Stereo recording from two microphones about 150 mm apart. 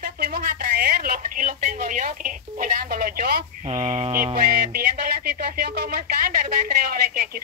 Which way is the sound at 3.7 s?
30° right (ahead or behind).